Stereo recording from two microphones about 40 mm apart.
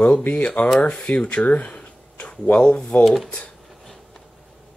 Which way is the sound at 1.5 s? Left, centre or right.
Left.